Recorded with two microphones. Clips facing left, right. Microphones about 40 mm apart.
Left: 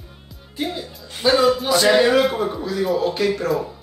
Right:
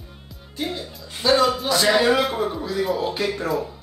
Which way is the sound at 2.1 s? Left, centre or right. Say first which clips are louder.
Left 2 dB; centre.